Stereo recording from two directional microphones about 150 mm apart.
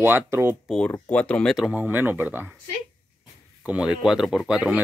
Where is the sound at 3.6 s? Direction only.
5° right (ahead or behind).